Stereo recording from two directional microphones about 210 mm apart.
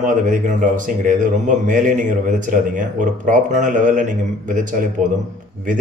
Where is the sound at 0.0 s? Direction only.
40° right (ahead or behind).